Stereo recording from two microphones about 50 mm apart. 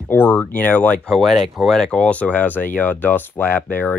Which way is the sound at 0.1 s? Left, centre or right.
Left.